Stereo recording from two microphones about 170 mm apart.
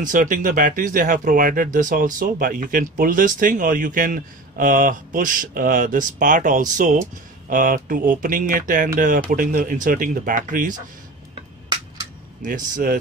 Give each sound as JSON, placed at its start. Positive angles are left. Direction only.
{"t": 0.0, "sound": "speech", "side_deg": -50}
{"t": 12.4, "sound": "speech", "side_deg": -50}